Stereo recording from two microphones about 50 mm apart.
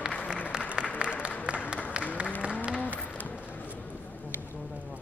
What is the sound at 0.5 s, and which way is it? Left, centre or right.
Applause, centre.